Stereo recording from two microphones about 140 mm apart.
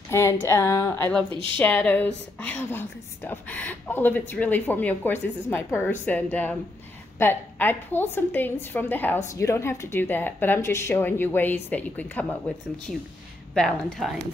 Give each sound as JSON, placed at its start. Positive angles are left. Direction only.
{"t": 0.1, "sound": "a woman's voice", "side_deg": 20}
{"t": 13.6, "sound": "speech", "side_deg": 0}